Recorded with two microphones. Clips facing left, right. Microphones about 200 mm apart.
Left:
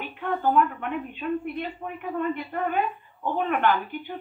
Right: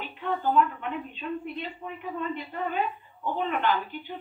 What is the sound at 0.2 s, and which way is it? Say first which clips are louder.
A woman's voice: left 2 dB; 50° left (ahead or behind).